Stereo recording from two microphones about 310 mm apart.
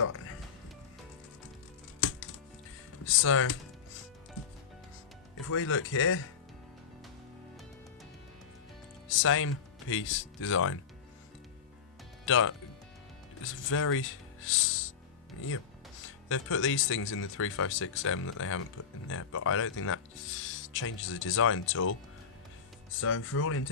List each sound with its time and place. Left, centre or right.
0.0 s music: left
2.0 s music: left
3.1 s speech: left
5.5 s speech: left
9.1 s speech: left
12.3 s speech: left
16.3 s speech: left
22.9 s speech: left